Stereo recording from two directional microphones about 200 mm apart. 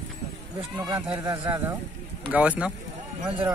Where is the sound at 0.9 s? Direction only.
10° right (ahead or behind).